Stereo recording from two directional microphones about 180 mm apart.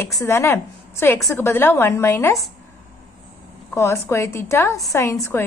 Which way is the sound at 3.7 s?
15° left (ahead or behind).